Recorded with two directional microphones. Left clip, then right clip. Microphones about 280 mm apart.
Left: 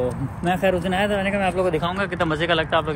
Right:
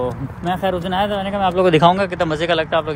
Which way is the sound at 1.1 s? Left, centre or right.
Right.